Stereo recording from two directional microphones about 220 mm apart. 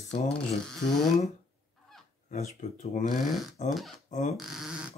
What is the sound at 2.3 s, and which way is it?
Speech, 30° left (ahead or behind).